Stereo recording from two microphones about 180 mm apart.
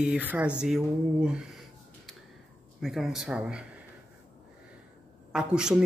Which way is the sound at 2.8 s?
Centre (ahead or behind).